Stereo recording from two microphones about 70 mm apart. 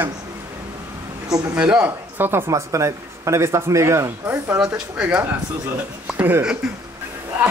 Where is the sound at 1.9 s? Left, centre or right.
Right.